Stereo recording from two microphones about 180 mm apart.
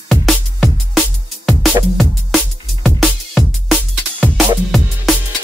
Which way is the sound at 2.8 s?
Centre (ahead or behind).